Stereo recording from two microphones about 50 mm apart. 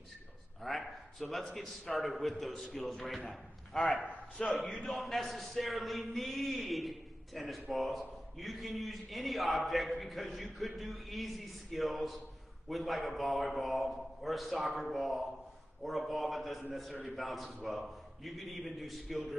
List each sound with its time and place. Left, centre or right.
0.6 s a man's voice: centre
3.7 s a man's voice: centre
4.0 s a man's voice: left
4.5 s a man's voice: centre